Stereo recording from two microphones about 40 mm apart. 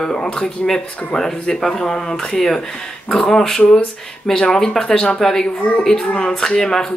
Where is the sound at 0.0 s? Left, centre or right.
Centre.